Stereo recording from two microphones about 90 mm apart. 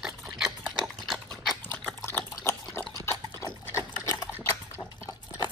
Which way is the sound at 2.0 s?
25° left (ahead or behind).